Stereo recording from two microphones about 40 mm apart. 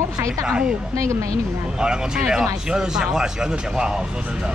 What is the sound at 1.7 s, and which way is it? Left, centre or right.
Speech, right.